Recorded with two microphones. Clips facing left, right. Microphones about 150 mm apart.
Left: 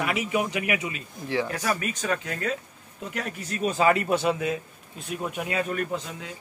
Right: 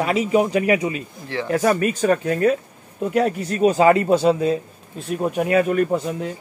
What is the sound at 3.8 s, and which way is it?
A man's voice, 30° right (ahead or behind).